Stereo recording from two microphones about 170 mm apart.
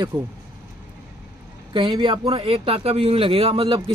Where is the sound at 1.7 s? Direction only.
30° right (ahead or behind).